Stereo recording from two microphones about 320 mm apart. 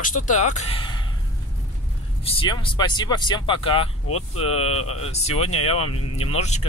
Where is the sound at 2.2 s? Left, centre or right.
Centre.